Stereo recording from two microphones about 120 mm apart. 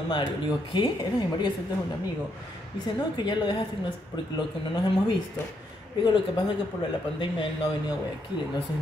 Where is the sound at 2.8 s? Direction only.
40° left (ahead or behind).